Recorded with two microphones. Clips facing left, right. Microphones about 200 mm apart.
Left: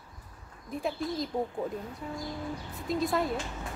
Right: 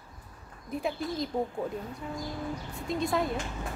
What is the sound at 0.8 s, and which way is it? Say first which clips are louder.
Speech: even; centre (ahead or behind).